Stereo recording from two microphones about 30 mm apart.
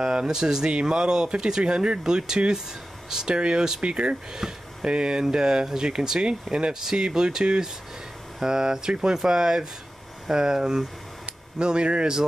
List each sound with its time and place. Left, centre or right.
0.0 s speech: right
3.3 s speech: right
4.3 s speech: centre
4.8 s speech: right
6.7 s speech: centre; by 12.2 s right